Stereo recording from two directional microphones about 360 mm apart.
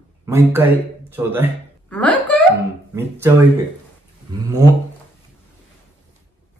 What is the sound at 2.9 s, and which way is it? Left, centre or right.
Speech, centre.